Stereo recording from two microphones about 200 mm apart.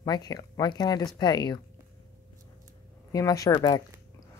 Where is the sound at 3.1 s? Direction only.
15° left (ahead or behind).